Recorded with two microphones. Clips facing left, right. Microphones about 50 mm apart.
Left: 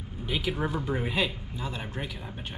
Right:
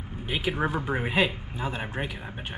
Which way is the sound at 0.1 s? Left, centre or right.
Right.